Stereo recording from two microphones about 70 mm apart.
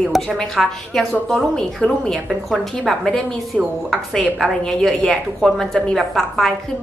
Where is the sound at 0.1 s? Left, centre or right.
Centre.